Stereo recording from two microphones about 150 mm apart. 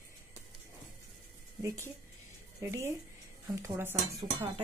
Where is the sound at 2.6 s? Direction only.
20° right (ahead or behind).